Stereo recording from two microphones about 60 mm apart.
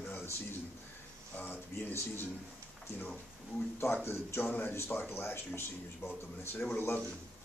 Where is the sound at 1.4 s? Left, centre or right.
Left.